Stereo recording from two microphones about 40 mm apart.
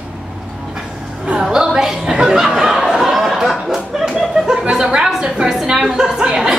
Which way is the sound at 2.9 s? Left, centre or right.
Centre.